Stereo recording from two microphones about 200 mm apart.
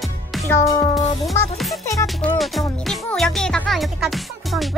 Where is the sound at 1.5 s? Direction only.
Centre (ahead or behind).